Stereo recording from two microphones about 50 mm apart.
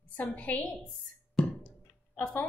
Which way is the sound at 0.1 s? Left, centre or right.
Left.